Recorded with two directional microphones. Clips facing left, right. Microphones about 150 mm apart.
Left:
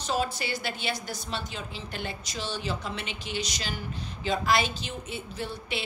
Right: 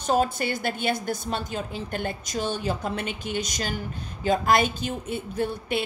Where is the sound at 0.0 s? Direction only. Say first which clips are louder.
Right 6 dB; 50° right (ahead or behind).